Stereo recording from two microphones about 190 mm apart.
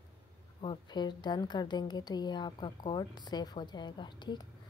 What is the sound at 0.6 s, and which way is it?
A woman's voice, 25° left (ahead or behind).